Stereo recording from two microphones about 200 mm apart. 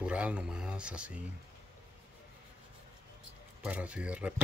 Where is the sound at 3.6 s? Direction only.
5° right (ahead or behind).